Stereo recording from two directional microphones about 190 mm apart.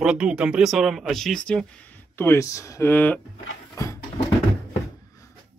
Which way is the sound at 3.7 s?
15° left (ahead or behind).